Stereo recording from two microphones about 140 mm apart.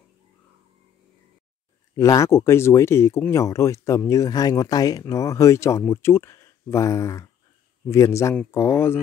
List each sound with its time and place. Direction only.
2.0 s speech: 25° left (ahead or behind)